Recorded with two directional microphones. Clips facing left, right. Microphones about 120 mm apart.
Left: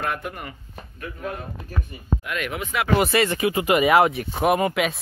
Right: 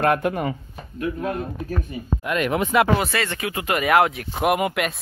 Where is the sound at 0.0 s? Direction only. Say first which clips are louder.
Right 9 dB; 80° right.